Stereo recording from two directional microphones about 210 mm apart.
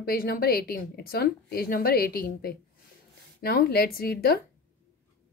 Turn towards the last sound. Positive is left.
turn(degrees=45)  # may be behind; listen again after turning